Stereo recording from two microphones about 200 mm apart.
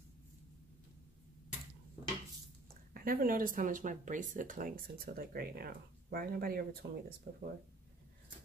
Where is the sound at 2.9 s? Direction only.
45° right (ahead or behind).